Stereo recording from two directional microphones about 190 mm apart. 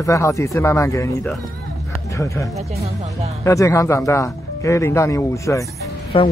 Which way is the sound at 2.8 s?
35° right (ahead or behind).